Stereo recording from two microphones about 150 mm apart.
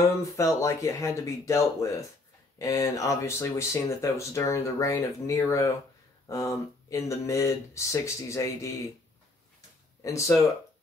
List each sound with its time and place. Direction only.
0.4 s speech: 20° left (ahead or behind)
10.0 s speech: 20° left (ahead or behind)